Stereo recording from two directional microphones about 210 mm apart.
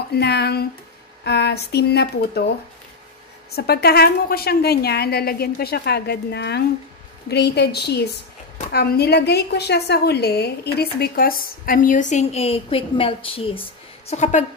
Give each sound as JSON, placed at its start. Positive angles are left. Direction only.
{"t": 0.1, "sound": "a woman's voice", "side_deg": 50}
{"t": 3.5, "sound": "a woman's voice", "side_deg": 50}